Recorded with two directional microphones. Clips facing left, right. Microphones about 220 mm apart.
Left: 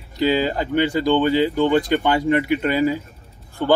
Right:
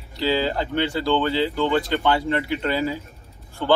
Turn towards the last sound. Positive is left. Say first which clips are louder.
# left 2 dB
turn(degrees=15)  # may be behind; listen again after turning